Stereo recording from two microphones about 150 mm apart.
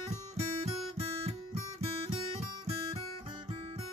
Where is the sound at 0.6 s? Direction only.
45° right (ahead or behind).